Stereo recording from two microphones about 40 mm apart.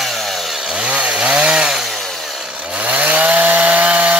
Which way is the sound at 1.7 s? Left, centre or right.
Centre.